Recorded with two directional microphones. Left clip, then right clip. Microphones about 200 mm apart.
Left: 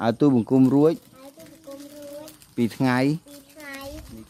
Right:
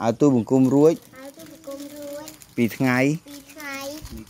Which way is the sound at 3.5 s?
50° right (ahead or behind).